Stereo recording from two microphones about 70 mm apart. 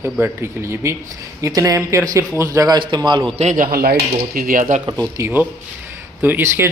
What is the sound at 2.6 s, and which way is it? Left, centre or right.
Speech, right.